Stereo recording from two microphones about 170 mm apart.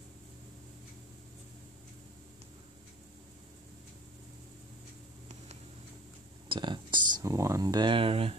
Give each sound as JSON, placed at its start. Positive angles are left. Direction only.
{"t": 6.5, "sound": "speech", "side_deg": -25}